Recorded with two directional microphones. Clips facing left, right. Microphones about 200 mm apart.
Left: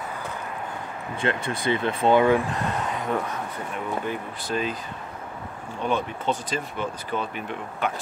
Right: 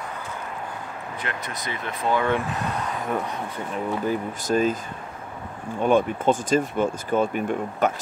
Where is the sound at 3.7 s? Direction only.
40° right (ahead or behind).